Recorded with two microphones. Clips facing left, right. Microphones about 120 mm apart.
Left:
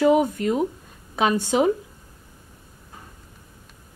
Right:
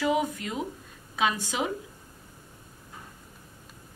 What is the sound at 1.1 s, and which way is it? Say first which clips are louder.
Speech: left 6 dB; 30° left (ahead or behind).